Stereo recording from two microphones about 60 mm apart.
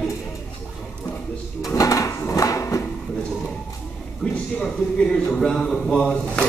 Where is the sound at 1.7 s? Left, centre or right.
Left.